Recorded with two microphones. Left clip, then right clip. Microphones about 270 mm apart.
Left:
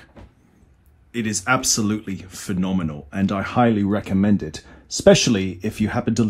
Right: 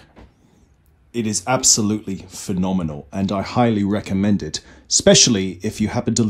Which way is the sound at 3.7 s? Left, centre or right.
Left.